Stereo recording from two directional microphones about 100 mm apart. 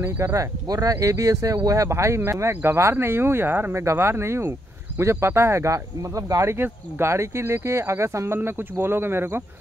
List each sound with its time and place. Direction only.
0.0 s speech: 30° right (ahead or behind)